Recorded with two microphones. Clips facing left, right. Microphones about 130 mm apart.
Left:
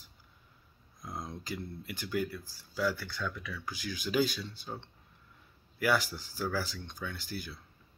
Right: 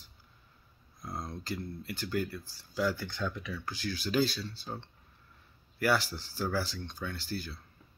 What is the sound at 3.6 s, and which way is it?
Speech, 10° left (ahead or behind).